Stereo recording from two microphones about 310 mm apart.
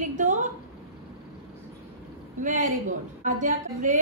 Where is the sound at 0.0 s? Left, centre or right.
Right.